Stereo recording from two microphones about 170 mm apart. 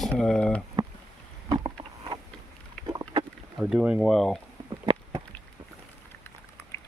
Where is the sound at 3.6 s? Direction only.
5° right (ahead or behind).